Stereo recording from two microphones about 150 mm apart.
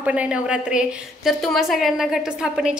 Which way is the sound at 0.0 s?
10° right (ahead or behind).